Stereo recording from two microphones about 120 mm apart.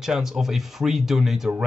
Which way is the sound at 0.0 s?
5° right (ahead or behind).